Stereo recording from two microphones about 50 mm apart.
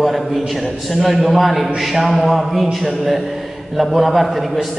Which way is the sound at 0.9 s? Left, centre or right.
Centre.